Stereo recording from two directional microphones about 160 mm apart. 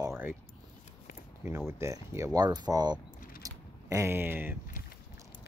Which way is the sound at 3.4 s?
20° right (ahead or behind).